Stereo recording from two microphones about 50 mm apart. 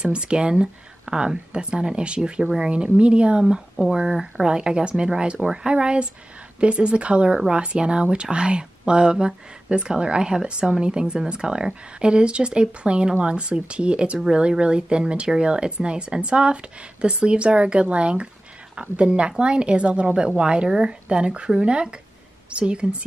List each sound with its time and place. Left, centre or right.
0.0 s speech: centre
7.3 s speech: centre